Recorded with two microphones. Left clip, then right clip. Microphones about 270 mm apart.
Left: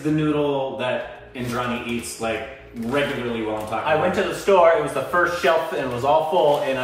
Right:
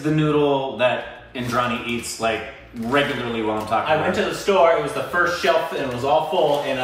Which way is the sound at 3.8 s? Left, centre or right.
Centre.